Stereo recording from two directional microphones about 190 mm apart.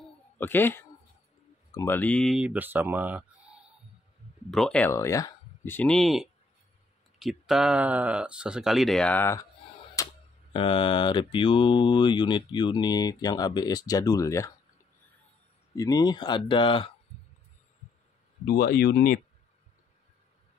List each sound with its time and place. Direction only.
0.4 s speech: 10° left (ahead or behind)
4.9 s speech: 15° left (ahead or behind)
10.0 s camera: 15° left (ahead or behind)
10.5 s speech: 25° left (ahead or behind)
15.7 s speech: 20° left (ahead or behind)
18.5 s speech: 55° left (ahead or behind)